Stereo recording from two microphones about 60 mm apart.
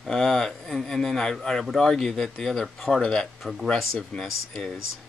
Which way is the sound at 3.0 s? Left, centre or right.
Centre.